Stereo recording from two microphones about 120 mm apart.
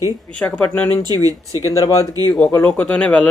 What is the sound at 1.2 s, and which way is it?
Speech, 25° right (ahead or behind).